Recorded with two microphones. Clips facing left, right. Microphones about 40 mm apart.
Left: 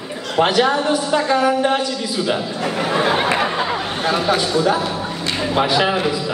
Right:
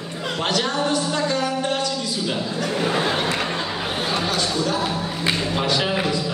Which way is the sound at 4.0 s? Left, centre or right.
Centre.